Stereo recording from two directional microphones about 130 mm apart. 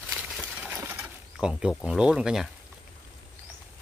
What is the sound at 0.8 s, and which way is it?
Bird, 15° right (ahead or behind).